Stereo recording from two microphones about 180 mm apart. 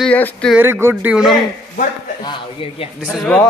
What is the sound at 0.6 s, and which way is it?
Speech, 15° right (ahead or behind).